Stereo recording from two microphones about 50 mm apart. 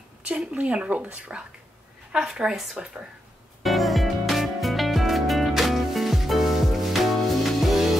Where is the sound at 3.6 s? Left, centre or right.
Centre.